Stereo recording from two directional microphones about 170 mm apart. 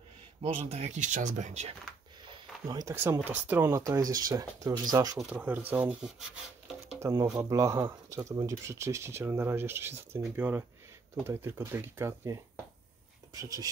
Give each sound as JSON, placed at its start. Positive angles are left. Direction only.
{"t": 0.4, "sound": "speech", "side_deg": -35}
{"t": 2.2, "sound": "a sound", "side_deg": -25}
{"t": 2.9, "sound": "speech", "side_deg": -15}
{"t": 5.3, "sound": "speech", "side_deg": -10}
{"t": 7.0, "sound": "speech", "side_deg": -20}